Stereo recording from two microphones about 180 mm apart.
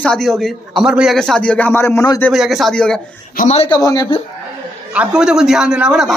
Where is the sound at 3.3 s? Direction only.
35° left (ahead or behind).